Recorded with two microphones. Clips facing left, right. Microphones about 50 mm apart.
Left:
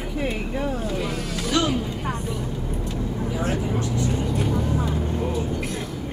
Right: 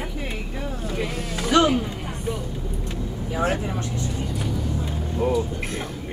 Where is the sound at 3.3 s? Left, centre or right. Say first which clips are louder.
Right 3 dB; right.